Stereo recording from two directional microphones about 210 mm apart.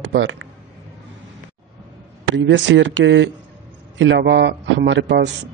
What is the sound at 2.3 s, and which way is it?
Speech, 60° right (ahead or behind).